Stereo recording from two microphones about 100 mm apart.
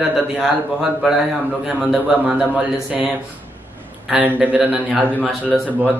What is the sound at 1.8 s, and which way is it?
Speech, 5° right (ahead or behind).